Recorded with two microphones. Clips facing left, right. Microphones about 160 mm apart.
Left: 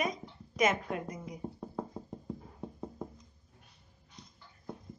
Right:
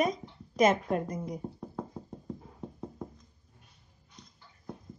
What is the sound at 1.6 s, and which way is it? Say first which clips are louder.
Knock: even; 5° left (ahead or behind).